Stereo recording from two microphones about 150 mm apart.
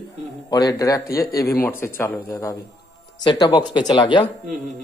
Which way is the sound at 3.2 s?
30° left (ahead or behind).